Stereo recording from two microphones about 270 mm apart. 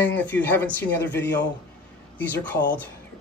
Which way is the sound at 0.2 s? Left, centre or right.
Centre.